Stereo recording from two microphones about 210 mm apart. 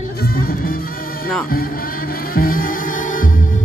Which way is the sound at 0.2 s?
45° left (ahead or behind).